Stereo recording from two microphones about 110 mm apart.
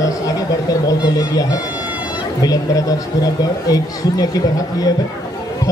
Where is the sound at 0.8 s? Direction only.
35° left (ahead or behind).